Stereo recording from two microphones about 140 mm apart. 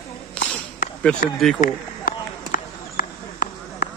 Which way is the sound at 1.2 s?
75° left (ahead or behind).